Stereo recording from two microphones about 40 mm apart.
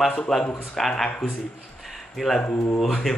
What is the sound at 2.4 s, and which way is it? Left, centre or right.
Speech, left.